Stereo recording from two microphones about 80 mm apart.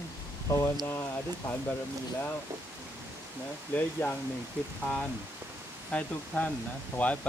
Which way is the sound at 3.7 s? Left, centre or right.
Centre.